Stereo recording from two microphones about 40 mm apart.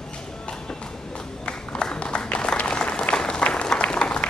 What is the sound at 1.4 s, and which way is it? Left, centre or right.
Applause, left.